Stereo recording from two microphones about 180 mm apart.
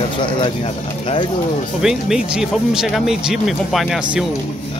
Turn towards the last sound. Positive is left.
turn(degrees=0)  # may be behind; listen again after turning